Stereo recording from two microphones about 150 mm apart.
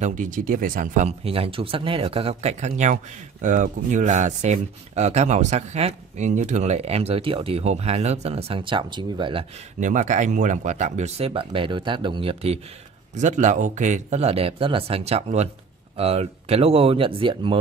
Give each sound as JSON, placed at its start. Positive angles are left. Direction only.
{"t": 0.0, "sound": "speech", "side_deg": -60}
{"t": 1.2, "sound": "speech", "side_deg": -40}
{"t": 9.8, "sound": "speech", "side_deg": -55}
{"t": 13.1, "sound": "speech", "side_deg": -55}